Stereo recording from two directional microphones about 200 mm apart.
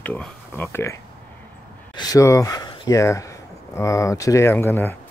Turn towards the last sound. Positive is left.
turn(degrees=10)  # may be behind; listen again after turning